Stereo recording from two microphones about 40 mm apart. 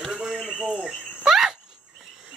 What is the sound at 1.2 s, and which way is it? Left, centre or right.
Cricket, centre.